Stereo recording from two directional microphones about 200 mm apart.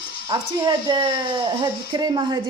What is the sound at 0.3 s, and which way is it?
Speech, 20° right (ahead or behind).